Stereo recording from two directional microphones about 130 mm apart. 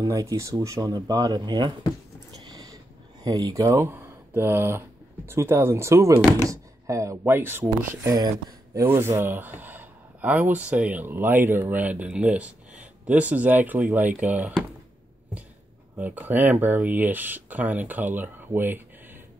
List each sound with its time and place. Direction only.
0.0 s speech: 25° right (ahead or behind)
2.4 s a sound: 30° right (ahead or behind)
3.3 s speech: 25° right (ahead or behind)
8.8 s speech: 20° right (ahead or behind)
16.0 s speech: 15° right (ahead or behind)